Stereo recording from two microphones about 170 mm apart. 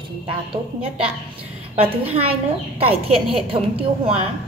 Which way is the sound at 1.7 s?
35° right (ahead or behind).